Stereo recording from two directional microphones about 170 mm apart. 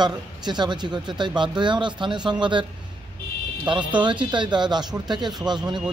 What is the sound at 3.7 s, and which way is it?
Speech, 25° right (ahead or behind).